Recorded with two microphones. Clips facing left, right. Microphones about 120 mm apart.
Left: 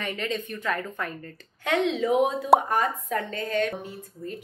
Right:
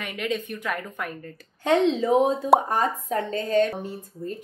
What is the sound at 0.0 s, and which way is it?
A woman's voice, 10° right (ahead or behind).